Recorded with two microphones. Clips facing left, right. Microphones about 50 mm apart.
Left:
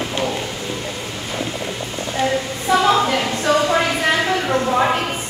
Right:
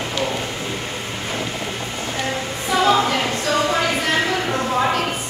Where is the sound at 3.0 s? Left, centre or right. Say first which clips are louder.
Left 2 dB; left.